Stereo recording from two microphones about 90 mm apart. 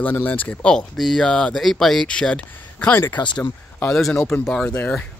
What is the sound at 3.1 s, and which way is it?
Speech, 60° left (ahead or behind).